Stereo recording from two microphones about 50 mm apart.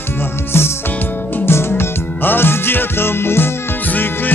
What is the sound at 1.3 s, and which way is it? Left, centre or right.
Music, left.